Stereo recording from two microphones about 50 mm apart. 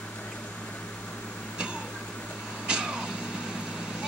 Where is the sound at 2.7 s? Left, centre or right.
Centre.